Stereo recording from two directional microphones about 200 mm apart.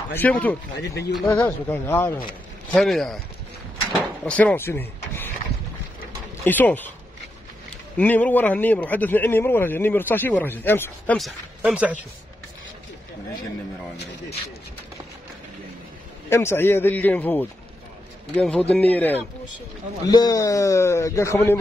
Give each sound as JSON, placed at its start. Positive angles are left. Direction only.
{"t": 0.1, "sound": "a man's voice", "side_deg": 10}
{"t": 0.7, "sound": "speech", "side_deg": 55}
{"t": 1.2, "sound": "a man's voice", "side_deg": 10}
{"t": 6.4, "sound": "a man's voice", "side_deg": 10}
{"t": 8.0, "sound": "a man's voice", "side_deg": 10}
{"t": 11.1, "sound": "speech", "side_deg": -5}
{"t": 16.3, "sound": "a man's voice", "side_deg": 10}
{"t": 20.1, "sound": "a man's voice", "side_deg": 20}